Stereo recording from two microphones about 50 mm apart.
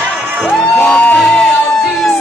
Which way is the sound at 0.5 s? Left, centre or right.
Centre.